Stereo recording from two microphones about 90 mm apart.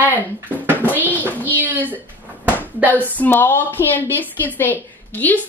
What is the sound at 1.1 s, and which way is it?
Child singing, 20° left (ahead or behind).